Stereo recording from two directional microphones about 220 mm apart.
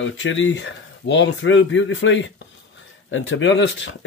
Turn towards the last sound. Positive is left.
turn(degrees=55)  # may be behind; listen again after turning